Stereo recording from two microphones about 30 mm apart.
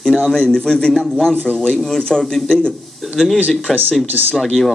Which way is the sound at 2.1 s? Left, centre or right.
Left.